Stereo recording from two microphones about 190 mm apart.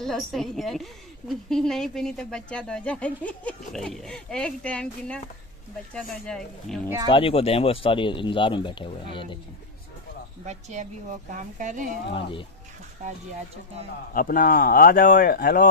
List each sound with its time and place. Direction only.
0.0 s speech: centre (ahead or behind)
7.1 s speech: 30° left (ahead or behind)
10.4 s speech: 40° right (ahead or behind)
12.1 s speech: 25° left (ahead or behind)
14.1 s speech: 45° left (ahead or behind)